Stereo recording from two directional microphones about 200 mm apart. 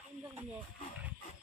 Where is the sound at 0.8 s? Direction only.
40° left (ahead or behind).